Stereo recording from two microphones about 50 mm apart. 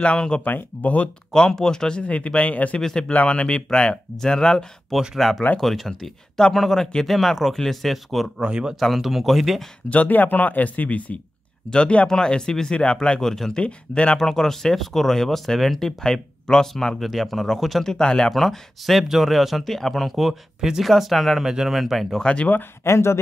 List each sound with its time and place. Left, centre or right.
0.0 s speech: left
0.4 s speech: left
1.3 s speech: centre
2.8 s speech: centre
3.1 s speech: left
5.1 s speech: centre
8.4 s speech: centre
8.7 s speech: centre
9.8 s speech: left
13.2 s speech: centre
13.6 s speech: left
14.1 s speech: centre
22.2 s speech: left
22.8 s speech: left